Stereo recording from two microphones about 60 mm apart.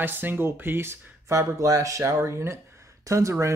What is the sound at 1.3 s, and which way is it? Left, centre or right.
Speech, right.